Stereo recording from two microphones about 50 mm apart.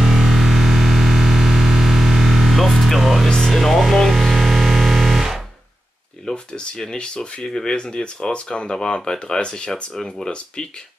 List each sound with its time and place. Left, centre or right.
0.0 s music: centre
6.2 s speech: centre